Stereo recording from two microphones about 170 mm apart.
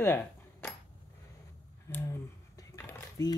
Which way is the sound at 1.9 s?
15° left (ahead or behind).